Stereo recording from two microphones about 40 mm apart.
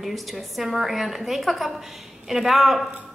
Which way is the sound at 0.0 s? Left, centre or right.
Centre.